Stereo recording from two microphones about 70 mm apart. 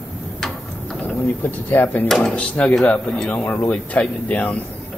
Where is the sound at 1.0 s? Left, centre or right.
Left.